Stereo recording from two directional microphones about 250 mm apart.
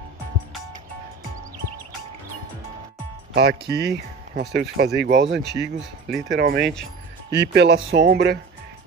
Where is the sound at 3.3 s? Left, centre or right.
Right.